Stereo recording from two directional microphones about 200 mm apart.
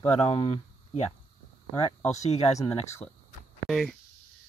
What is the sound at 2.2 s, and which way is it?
Speech, 35° left (ahead or behind).